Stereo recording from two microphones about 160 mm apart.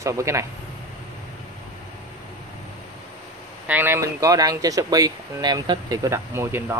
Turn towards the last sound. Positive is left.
turn(degrees=-15)  # may be behind; listen again after turning